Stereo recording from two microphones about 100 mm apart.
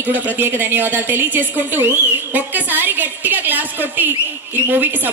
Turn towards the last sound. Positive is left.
turn(degrees=-20)  # may be behind; listen again after turning